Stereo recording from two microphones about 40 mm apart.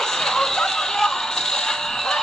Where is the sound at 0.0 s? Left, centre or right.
Centre.